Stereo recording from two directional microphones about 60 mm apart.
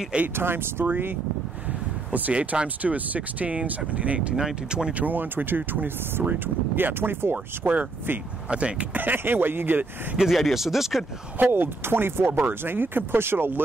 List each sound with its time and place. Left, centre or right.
0.4 s speech: right
2.1 s speech: right
4.4 s speech: centre
5.0 s speech: right
7.7 s speech: right
9.0 s speech: right
10.3 s speech: centre
11.3 s speech: right